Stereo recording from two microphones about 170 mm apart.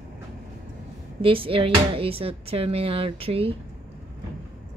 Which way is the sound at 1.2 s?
30° right (ahead or behind).